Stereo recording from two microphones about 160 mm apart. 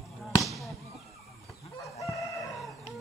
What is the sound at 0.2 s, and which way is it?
Fireworks, centre (ahead or behind).